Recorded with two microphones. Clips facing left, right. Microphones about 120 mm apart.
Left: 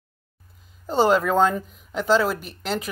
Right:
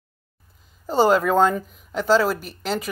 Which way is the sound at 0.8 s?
Centre (ahead or behind).